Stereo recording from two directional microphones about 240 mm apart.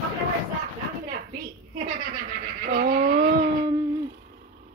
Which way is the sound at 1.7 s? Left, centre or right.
Right.